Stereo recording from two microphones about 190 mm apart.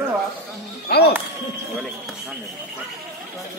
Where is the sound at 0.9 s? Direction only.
60° left (ahead or behind).